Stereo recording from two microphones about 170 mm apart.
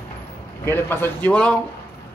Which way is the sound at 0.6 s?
15° left (ahead or behind).